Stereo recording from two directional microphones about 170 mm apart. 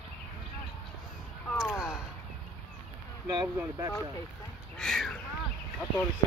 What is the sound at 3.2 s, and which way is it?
Speech, 20° right (ahead or behind).